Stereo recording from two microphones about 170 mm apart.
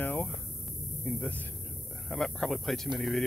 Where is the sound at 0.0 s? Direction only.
10° left (ahead or behind).